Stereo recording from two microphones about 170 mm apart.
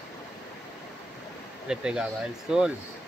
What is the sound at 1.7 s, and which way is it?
Speech, 5° right (ahead or behind).